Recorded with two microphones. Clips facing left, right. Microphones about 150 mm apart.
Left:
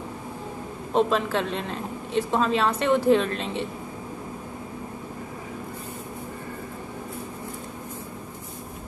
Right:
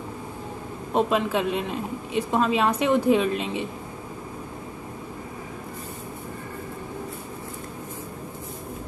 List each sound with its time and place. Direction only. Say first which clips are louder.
0.9 s a woman's voice: even; 10° right (ahead or behind)